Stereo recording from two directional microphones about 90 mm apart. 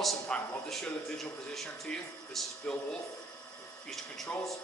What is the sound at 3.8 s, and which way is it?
Speech, 5° left (ahead or behind).